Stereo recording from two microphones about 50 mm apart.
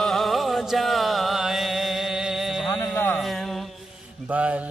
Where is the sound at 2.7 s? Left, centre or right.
Left.